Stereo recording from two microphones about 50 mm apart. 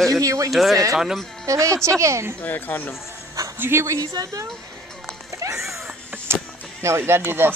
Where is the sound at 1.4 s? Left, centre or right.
Right.